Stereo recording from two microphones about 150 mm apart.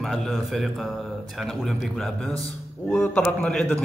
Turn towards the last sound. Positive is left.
turn(degrees=5)  # may be behind; listen again after turning